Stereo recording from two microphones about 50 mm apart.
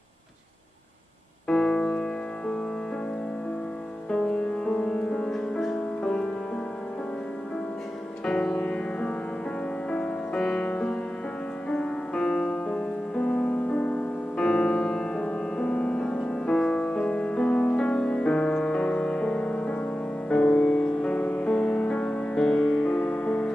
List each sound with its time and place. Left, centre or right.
1.5 s music: centre
4.1 s music: centre
8.3 s music: centre
21.2 s music: left
21.5 s music: centre